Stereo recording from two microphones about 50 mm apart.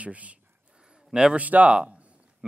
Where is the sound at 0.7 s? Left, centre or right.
Centre.